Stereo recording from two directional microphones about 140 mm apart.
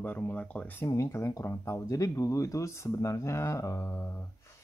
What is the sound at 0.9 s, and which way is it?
Speech, 20° left (ahead or behind).